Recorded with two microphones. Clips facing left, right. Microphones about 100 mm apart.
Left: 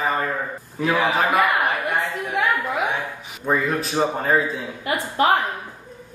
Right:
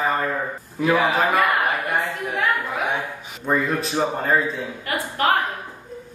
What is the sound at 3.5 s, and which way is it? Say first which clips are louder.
A man's voice: even; centre (ahead or behind).